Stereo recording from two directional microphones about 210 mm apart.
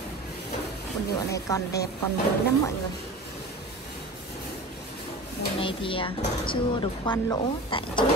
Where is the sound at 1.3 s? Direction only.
15° left (ahead or behind).